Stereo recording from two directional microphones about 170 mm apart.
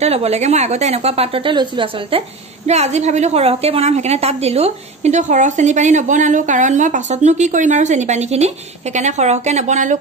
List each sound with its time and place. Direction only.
0.0 s a woman's voice: 40° right (ahead or behind)